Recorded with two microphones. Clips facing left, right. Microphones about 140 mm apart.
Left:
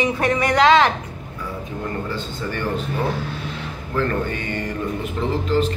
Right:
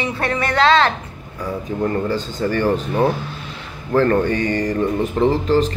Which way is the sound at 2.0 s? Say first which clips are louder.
Right 6 dB; 40° right (ahead or behind).